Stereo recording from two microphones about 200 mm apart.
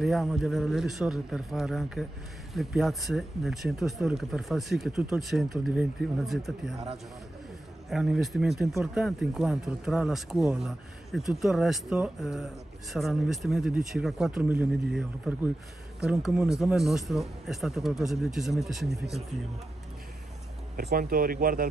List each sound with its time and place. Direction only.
0.0 s speech: centre (ahead or behind)
7.9 s speech: centre (ahead or behind)
20.9 s speech: 45° right (ahead or behind)